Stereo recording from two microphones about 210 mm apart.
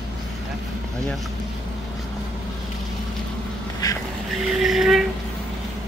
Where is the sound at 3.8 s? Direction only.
15° left (ahead or behind).